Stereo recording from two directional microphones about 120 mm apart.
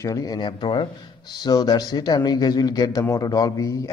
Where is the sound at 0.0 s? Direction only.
30° left (ahead or behind).